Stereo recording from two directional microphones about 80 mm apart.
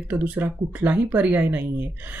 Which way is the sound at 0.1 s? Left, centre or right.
Right.